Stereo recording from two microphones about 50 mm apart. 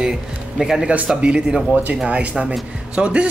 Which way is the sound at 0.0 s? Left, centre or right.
Centre.